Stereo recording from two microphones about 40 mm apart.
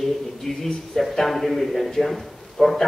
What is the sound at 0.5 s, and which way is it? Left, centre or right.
A man's voice, centre.